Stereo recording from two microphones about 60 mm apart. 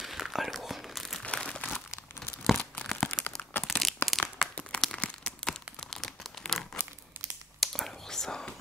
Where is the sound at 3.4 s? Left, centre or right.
Left.